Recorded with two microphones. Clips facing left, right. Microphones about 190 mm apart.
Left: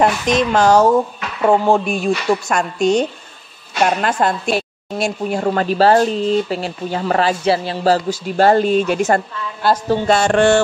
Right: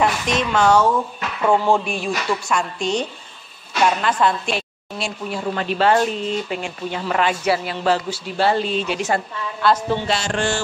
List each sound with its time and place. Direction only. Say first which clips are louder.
0.0 s a woman's voice: left 5 dB; 35° left (ahead or behind)
1.4 s speech: left 3 dB; 25° left (ahead or behind)
1.9 s a woman's voice: left 6 dB; 45° left (ahead or behind)